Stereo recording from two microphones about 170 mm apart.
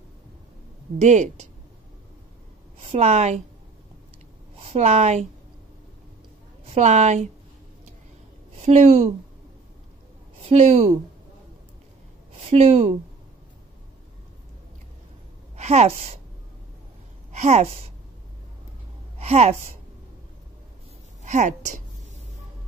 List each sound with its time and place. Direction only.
1.0 s speech: 45° right (ahead or behind)
2.8 s a woman's voice: 35° right (ahead or behind)
4.6 s a woman's voice: 35° right (ahead or behind)
6.6 s a woman's voice: 40° right (ahead or behind)
8.5 s a woman's voice: 40° right (ahead or behind)
10.5 s speech: 40° right (ahead or behind)
12.4 s speech: 35° right (ahead or behind)
15.5 s a woman's voice: 40° right (ahead or behind)
17.3 s a woman's voice: 40° right (ahead or behind)
19.1 s a sound: 40° right (ahead or behind)
21.2 s a woman's voice: 45° right (ahead or behind)